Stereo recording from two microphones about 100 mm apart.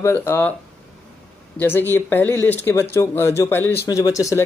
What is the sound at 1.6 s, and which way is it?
Speech, 20° left (ahead or behind).